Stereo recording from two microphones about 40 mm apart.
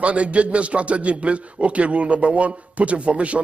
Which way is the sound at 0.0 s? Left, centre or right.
Right.